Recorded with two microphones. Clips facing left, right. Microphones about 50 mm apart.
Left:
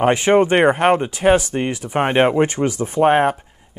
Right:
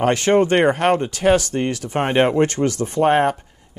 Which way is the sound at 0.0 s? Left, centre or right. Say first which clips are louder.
Left 2 dB; centre.